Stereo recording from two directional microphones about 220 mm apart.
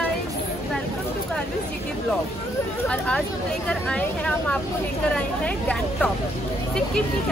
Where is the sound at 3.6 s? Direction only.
5° left (ahead or behind).